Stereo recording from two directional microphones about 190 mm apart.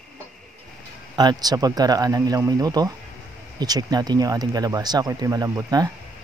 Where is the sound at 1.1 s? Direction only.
20° right (ahead or behind).